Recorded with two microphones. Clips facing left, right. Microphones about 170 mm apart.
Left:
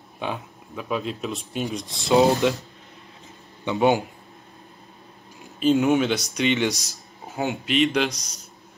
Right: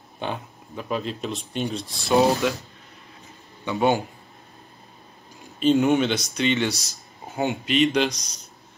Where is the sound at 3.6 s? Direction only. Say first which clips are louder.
Left 2 dB; 15° left (ahead or behind).